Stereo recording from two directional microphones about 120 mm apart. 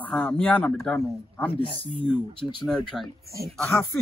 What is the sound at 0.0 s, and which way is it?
A man's voice, 10° left (ahead or behind).